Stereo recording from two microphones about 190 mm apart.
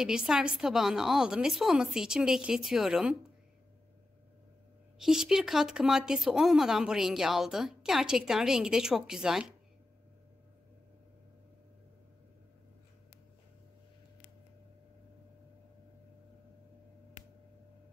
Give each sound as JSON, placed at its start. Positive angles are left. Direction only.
{"t": 0.0, "sound": "speech", "side_deg": -5}
{"t": 4.9, "sound": "speech", "side_deg": 0}